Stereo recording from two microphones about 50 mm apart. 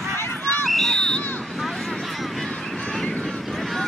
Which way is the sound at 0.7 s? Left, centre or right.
Centre.